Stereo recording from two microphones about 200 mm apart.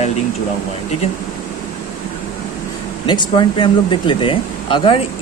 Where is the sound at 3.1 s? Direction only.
25° left (ahead or behind).